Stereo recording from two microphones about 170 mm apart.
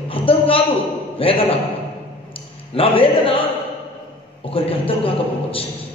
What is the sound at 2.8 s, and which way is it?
Speech, 35° left (ahead or behind).